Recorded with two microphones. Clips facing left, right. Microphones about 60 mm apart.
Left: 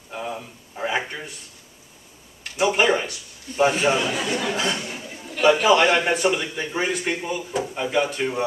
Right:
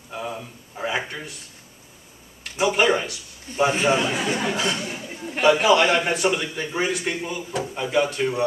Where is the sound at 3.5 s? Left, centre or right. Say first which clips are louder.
Left 1 dB; right.